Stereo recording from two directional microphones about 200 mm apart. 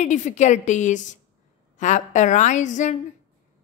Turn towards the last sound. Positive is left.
turn(degrees=35)  # may be behind; listen again after turning